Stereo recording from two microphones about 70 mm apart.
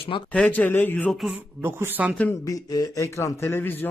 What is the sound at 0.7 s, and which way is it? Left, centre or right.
Speech, left.